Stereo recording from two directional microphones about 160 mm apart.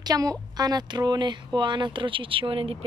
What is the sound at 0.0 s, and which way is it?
Speech, 25° right (ahead or behind).